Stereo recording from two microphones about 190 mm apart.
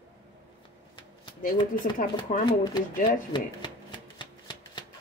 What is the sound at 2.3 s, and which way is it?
Speech, 40° left (ahead or behind).